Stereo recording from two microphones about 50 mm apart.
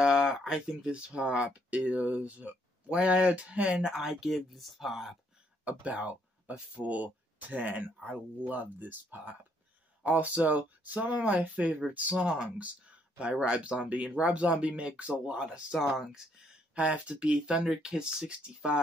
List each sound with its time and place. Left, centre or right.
0.0 s a sound: centre
0.4 s speech: centre
3.8 s speech: centre
4.3 s speech: centre
5.7 s speech: right
12.2 s speech: centre
12.4 s speech: right
15.9 s speech: centre
16.7 s speech: right